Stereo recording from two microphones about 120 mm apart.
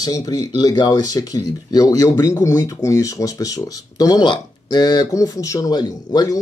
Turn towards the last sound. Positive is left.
turn(degrees=35)  # may be behind; listen again after turning